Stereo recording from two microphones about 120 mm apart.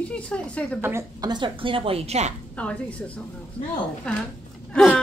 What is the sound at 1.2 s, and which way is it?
A woman's voice, 40° right (ahead or behind).